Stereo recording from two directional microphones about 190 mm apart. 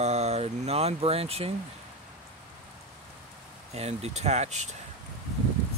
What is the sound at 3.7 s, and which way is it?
Speech, 35° right (ahead or behind).